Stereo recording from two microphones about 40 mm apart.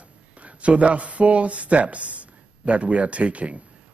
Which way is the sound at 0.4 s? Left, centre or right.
Right.